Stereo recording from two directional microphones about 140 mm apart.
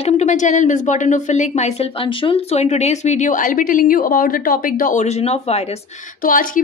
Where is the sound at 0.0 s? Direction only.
55° left (ahead or behind); by 5.0 s 80° left.